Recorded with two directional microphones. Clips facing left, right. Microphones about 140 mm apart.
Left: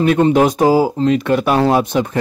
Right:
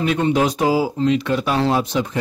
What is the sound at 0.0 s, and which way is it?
Speech, 50° left (ahead or behind).